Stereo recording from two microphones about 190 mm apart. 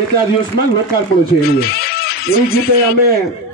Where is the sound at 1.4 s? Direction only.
55° left (ahead or behind).